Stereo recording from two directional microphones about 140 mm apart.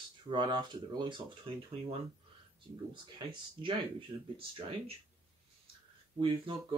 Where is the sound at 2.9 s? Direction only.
35° right (ahead or behind).